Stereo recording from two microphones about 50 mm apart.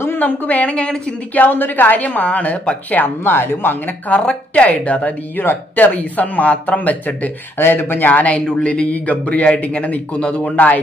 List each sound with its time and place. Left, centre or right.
0.0 s speech: left
3.0 s speech: left
4.1 s speech: left
5.4 s speech: left
5.9 s speech: left
7.5 s speech: left